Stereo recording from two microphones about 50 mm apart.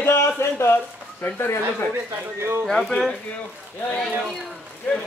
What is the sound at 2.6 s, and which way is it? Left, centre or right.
Speech, centre.